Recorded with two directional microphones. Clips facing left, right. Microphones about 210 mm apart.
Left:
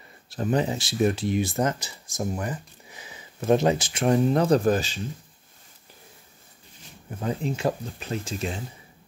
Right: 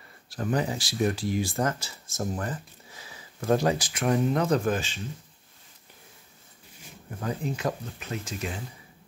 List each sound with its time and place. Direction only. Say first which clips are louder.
0.3 s speech: left 3 dB; 25° left (ahead or behind)
7.2 s speech: left 3 dB; 25° left (ahead or behind)